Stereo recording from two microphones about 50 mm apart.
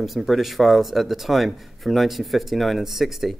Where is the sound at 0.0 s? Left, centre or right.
Centre.